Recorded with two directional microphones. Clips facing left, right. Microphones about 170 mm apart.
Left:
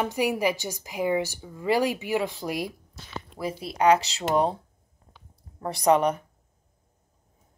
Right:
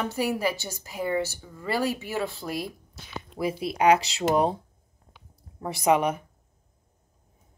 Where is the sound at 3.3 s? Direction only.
10° right (ahead or behind).